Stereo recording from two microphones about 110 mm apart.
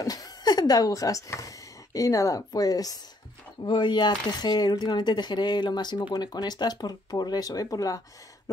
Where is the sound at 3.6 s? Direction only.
50° left (ahead or behind).